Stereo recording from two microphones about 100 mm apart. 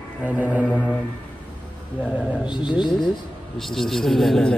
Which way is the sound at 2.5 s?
50° left (ahead or behind).